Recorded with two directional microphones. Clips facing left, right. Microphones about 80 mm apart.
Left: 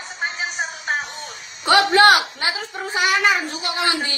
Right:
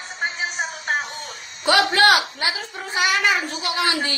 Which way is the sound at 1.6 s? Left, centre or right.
Left.